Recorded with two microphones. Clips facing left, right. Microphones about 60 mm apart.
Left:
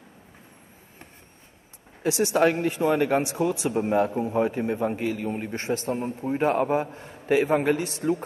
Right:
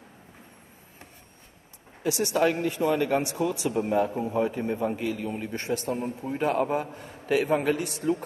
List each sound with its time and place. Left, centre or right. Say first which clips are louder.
2.0 s a man's voice: left 3 dB; left
4.1 s a man's voice: left 2 dB; centre; by 7.9 s left